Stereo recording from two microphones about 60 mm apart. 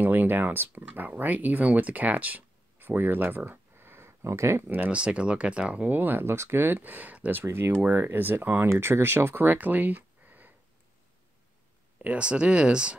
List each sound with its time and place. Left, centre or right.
0.0 s speech: right
4.6 s speech: right
4.9 s speech: centre
5.9 s speech: right
7.4 s speech: right
8.6 s speech: right
12.0 s speech: right